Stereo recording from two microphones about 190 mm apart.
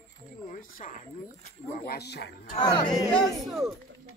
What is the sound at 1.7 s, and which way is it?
Speech, 55° left (ahead or behind).